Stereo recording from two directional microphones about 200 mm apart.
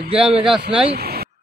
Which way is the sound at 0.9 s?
50° right (ahead or behind).